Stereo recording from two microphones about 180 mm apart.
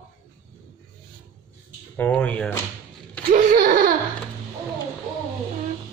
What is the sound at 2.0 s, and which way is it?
Speech, 10° left (ahead or behind).